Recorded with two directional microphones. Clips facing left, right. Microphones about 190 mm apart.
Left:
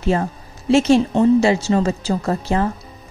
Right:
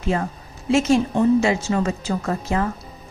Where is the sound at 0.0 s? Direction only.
30° left (ahead or behind).